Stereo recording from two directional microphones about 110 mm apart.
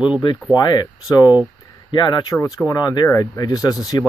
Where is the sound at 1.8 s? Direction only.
45° left (ahead or behind).